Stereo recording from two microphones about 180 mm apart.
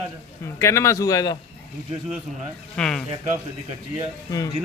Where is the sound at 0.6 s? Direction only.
15° left (ahead or behind).